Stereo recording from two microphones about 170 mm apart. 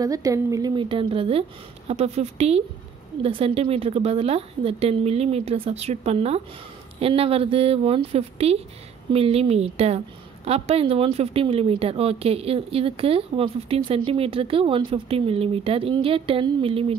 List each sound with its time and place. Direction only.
0.0 s a woman's voice: 20° right (ahead or behind)